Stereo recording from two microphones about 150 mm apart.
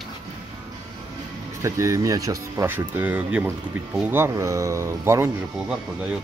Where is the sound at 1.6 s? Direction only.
20° right (ahead or behind).